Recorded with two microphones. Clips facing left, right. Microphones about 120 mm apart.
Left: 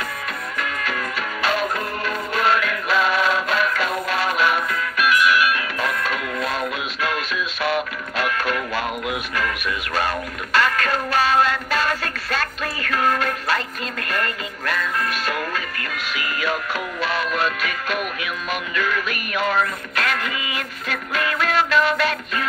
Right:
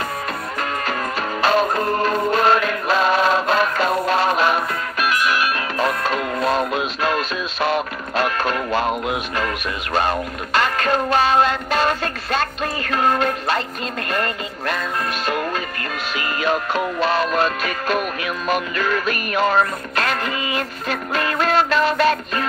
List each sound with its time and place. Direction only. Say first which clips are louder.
1.4 s music: right 6 dB; 30° right (ahead or behind)
9.9 s music: right 5 dB; 25° right (ahead or behind)